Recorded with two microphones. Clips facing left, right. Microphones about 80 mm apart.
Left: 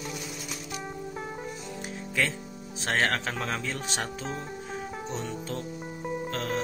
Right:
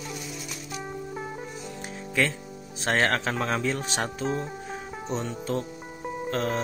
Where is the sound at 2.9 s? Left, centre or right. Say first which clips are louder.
Right 3 dB; centre.